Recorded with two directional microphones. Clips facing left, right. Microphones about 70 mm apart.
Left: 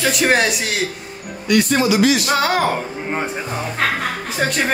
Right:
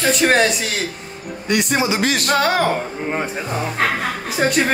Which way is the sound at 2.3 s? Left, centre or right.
Centre.